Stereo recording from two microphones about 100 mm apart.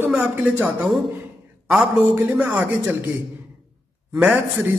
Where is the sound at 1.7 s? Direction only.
5° right (ahead or behind).